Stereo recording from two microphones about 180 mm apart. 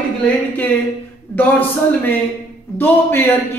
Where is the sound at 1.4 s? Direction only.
10° left (ahead or behind).